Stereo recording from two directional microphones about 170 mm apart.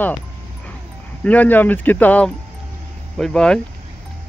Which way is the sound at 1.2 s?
10° left (ahead or behind).